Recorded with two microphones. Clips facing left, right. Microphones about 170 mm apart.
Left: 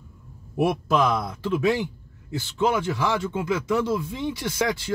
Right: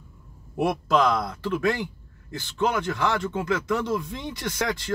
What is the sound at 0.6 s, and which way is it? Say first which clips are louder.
Speech: left 1 dB; 10° left (ahead or behind).